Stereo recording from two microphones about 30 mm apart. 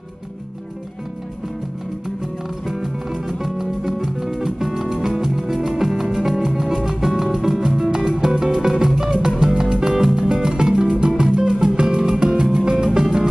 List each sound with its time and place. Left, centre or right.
2.6 s music: centre
10.2 s music: right